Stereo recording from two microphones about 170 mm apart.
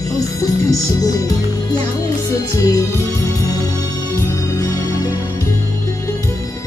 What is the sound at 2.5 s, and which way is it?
Music, 20° left (ahead or behind).